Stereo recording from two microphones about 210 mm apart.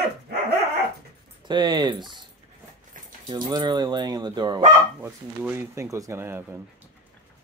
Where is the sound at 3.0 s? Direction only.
40° right (ahead or behind).